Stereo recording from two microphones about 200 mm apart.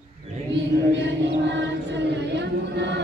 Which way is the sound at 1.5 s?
65° right (ahead or behind).